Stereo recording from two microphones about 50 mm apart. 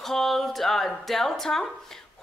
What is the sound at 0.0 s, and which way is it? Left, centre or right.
A woman's voice, centre.